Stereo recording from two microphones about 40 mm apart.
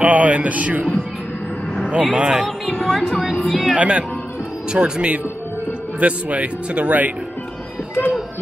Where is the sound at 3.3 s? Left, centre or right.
Left.